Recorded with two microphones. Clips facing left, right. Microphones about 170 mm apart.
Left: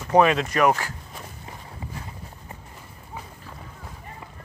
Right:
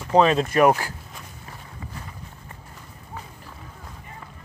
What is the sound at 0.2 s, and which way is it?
Speech, 35° right (ahead or behind).